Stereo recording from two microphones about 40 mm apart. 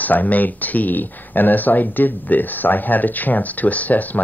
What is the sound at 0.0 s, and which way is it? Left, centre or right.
Speech, left.